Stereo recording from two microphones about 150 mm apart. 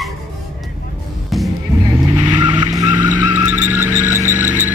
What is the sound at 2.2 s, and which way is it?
Vehicle, 30° right (ahead or behind).